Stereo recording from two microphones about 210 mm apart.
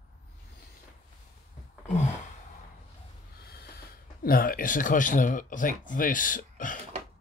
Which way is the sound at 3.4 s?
50° left (ahead or behind).